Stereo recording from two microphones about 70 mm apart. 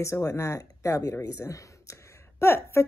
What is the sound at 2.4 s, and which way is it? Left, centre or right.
Speech, left.